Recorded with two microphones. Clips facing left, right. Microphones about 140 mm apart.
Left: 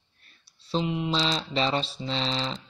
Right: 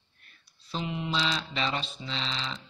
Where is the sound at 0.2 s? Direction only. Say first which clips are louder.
Even; 30° left (ahead or behind).